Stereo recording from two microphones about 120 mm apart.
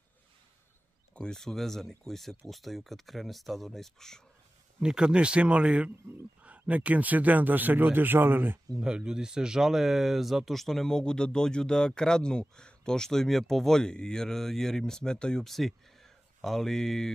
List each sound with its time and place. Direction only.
1.1 s speech: 5° left (ahead or behind)
4.7 s speech: 5° right (ahead or behind)
8.7 s speech: 5° right (ahead or behind)